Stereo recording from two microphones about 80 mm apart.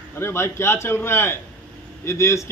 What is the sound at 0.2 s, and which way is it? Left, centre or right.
A man's voice, left.